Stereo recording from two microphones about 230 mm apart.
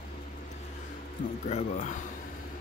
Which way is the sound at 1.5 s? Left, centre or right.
Left.